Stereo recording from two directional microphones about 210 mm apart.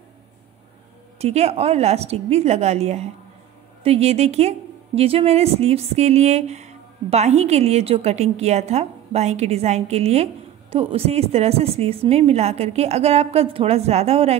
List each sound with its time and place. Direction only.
1.1 s a woman's voice: 30° right (ahead or behind)